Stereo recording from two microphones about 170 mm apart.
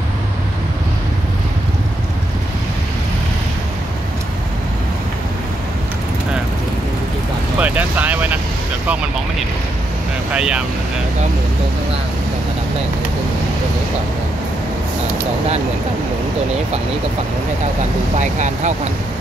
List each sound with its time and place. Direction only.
7.5 s vehicle: 10° right (ahead or behind)
10.3 s speech: 5° right (ahead or behind)
18.2 s speech: 45° right (ahead or behind)